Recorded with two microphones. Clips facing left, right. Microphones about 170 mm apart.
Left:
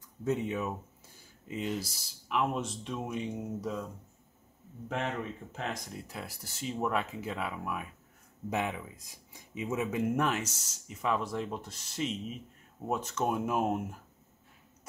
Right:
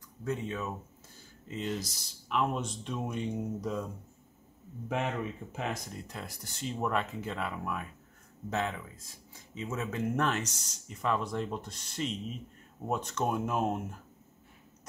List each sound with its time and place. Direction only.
0.2 s speech: 20° left (ahead or behind); by 3.8 s centre (ahead or behind)
4.8 s speech: 10° right (ahead or behind)